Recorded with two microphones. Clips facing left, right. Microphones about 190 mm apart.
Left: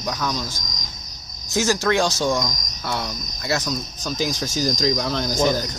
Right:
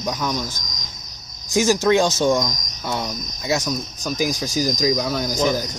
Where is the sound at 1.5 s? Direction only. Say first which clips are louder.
Right 3 dB; 15° right (ahead or behind).